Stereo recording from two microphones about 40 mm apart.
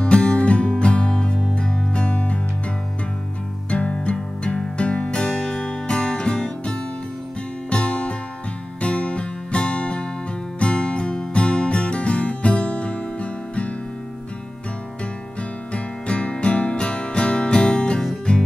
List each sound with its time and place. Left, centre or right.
0.0 s music: left
3.9 s music: left
15.7 s music: left